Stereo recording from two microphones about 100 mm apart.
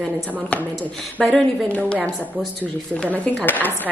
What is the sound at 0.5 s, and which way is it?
Speech, 10° left (ahead or behind).